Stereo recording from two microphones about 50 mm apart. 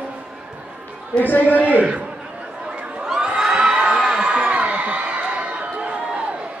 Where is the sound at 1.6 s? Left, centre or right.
Right.